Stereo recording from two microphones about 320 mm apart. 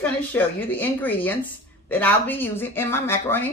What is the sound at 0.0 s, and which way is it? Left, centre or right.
A woman's voice, centre.